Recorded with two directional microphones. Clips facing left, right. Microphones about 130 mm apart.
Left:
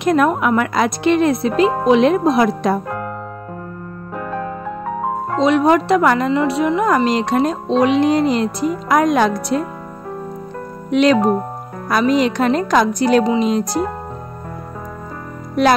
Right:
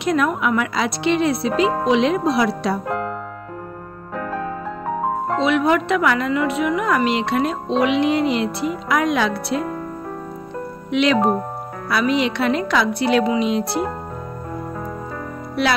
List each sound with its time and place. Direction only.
0.0 s speech: 45° left (ahead or behind)
5.4 s speech: 35° left (ahead or behind)
10.9 s speech: 40° left (ahead or behind)
15.6 s speech: 40° left (ahead or behind)